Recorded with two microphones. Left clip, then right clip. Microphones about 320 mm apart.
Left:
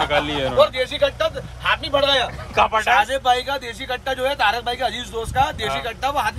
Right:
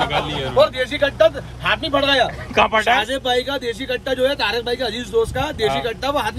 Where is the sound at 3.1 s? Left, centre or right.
Left.